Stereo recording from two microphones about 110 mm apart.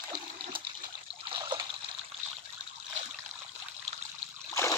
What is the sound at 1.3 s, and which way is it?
Water, 50° right (ahead or behind).